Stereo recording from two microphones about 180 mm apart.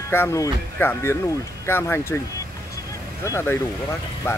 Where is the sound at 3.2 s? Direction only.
15° left (ahead or behind).